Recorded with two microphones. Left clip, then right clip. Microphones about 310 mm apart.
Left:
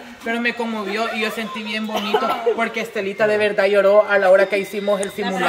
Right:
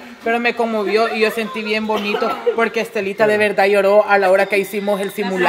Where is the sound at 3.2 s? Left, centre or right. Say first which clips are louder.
Right 3 dB; right.